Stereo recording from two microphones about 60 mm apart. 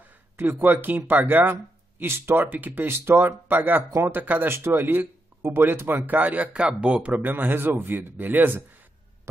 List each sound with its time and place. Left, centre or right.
0.4 s speech: right
2.4 s speech: right
7.2 s speech: right